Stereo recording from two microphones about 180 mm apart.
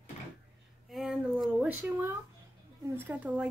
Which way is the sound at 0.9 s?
Centre (ahead or behind).